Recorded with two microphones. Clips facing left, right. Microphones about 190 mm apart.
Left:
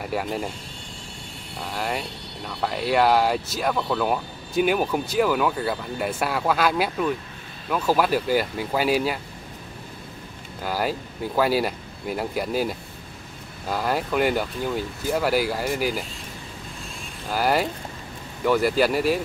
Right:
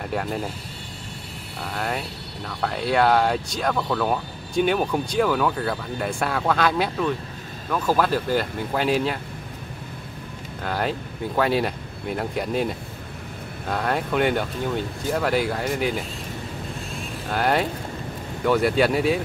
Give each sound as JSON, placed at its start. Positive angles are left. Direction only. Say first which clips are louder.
{"t": 0.0, "sound": "speech", "louder": "even", "side_deg": 5}
{"t": 1.6, "sound": "speech", "louder": "even", "side_deg": 0}
{"t": 10.6, "sound": "speech", "louder": "even", "side_deg": 5}
{"t": 17.3, "sound": "speech", "louder": "even", "side_deg": 5}